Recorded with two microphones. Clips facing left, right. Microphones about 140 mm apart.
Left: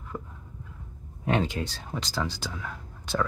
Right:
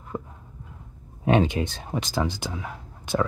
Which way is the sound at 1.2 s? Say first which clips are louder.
Right 6 dB; 20° right (ahead or behind).